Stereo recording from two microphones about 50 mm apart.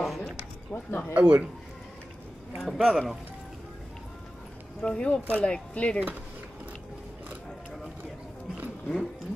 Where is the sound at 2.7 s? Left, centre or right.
Centre.